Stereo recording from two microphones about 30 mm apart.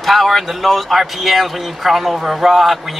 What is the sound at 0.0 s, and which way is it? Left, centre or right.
A man's voice, centre.